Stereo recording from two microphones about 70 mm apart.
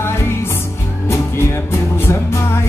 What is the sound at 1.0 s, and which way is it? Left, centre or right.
Music, left.